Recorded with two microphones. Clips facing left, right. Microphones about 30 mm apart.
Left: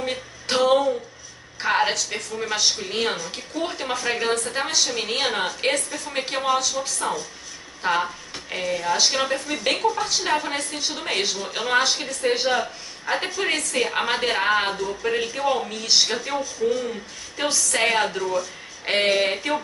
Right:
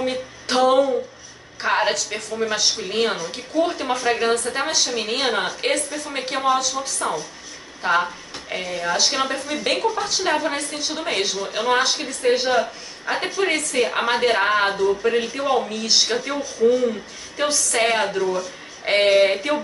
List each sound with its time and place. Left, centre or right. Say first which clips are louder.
0.0 s music: right 4 dB; centre
1.6 s a woman's voice: right 1 dB; centre
14.7 s speech: right 7 dB; centre
15.0 s a woman's voice: right 2 dB; centre